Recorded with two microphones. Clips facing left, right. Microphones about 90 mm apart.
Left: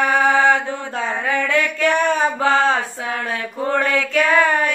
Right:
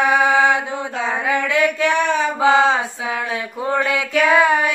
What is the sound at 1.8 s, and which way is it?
Speech, 45° left (ahead or behind).